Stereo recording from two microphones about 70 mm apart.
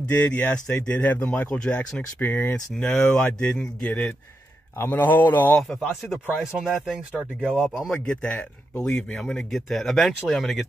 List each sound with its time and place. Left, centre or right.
0.1 s speech: centre
2.1 s a man's voice: left
2.5 s speech: centre
4.7 s a man's voice: left
5.6 s speech: centre
6.4 s speech: centre
7.9 s speech: centre